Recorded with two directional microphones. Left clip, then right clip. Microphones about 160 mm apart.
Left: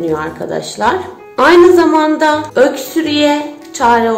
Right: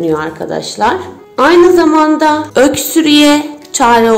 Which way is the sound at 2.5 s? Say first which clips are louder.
Right 2 dB; 45° right (ahead or behind).